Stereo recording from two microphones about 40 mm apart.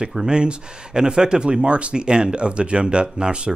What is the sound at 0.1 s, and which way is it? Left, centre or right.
Speech, right.